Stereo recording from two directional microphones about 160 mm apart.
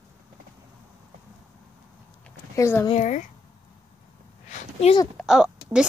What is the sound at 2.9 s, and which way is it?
Speech, 50° left (ahead or behind).